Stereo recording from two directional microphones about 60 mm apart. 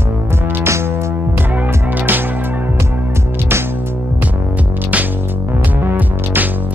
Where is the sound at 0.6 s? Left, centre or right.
Right.